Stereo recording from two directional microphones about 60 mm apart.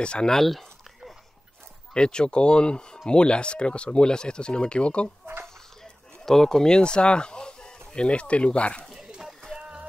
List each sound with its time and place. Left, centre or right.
0.0 s a sound: centre
2.0 s speech: centre
5.2 s a sound: right
6.2 s speech: centre
8.8 s pigeon: centre
9.6 s music: centre